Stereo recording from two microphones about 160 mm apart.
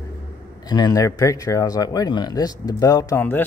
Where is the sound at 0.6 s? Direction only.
25° left (ahead or behind).